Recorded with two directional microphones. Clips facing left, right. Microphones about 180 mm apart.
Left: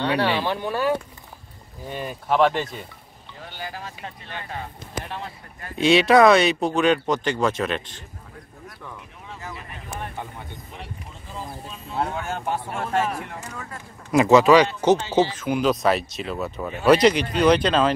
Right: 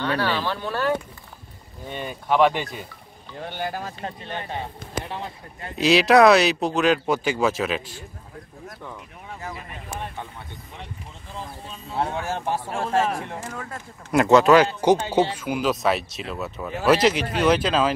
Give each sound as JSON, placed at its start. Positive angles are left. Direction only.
{"t": 0.1, "sound": "speech", "side_deg": 20}
{"t": 3.3, "sound": "speech", "side_deg": -55}
{"t": 4.0, "sound": "speech", "side_deg": -25}
{"t": 5.8, "sound": "speech", "side_deg": 0}
{"t": 12.0, "sound": "speech", "side_deg": -25}
{"t": 14.1, "sound": "speech", "side_deg": 0}